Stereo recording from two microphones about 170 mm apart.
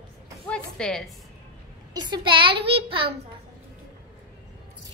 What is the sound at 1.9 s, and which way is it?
A child's voice, 25° right (ahead or behind).